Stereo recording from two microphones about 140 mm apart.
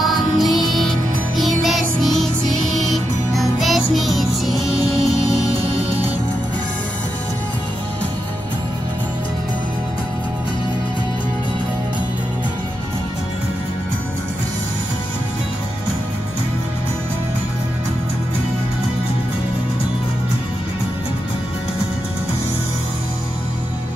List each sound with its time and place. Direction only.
0.0 s music: centre (ahead or behind)
4.7 s music: 25° left (ahead or behind)